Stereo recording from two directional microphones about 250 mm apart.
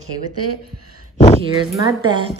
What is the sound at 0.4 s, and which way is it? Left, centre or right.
Speech, right.